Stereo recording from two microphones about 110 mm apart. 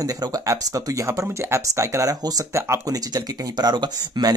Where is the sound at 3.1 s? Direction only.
40° right (ahead or behind).